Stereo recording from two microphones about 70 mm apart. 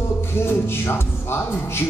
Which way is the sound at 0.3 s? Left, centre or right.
Left.